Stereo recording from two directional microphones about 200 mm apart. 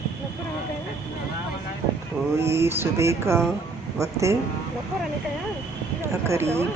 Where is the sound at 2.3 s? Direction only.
15° right (ahead or behind).